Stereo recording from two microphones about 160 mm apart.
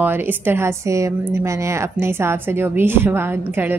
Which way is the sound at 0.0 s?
15° right (ahead or behind).